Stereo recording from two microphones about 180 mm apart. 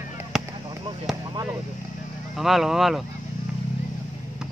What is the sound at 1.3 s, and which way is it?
Speech, 15° right (ahead or behind).